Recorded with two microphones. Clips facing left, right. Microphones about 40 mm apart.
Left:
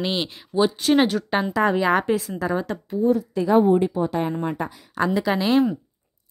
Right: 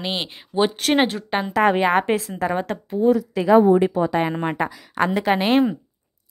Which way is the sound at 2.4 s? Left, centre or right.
Right.